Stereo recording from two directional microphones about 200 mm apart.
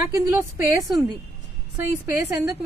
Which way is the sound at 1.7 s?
15° right (ahead or behind).